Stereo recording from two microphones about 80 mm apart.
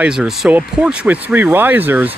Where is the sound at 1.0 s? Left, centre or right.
Centre.